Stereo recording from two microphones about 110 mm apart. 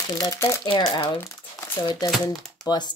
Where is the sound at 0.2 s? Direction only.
30° left (ahead or behind).